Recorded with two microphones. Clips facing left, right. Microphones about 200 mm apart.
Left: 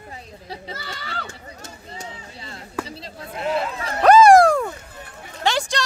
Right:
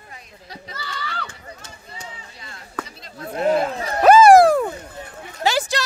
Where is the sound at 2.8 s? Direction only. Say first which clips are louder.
Left 7 dB; 30° left (ahead or behind).